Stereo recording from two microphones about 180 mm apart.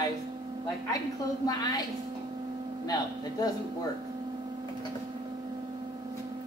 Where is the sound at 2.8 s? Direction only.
20° left (ahead or behind).